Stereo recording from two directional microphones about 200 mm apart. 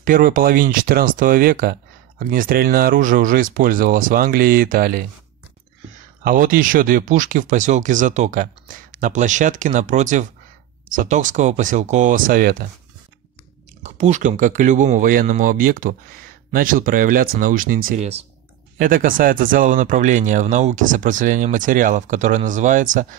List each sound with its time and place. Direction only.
0.0 s speech: 45° right (ahead or behind)
6.2 s speech: 45° right (ahead or behind)
13.8 s speech: 35° right (ahead or behind)
17.9 s speech: 30° right (ahead or behind)
18.8 s speech: 45° right (ahead or behind)